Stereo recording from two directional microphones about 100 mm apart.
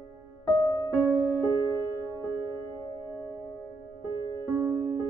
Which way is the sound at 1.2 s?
20° right (ahead or behind).